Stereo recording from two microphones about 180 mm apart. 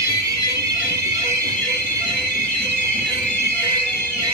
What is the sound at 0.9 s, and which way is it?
Train, 20° right (ahead or behind).